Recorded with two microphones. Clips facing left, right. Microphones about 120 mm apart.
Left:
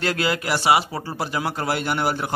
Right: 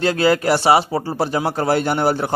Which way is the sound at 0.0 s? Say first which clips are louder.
Right 6 dB; 25° right (ahead or behind).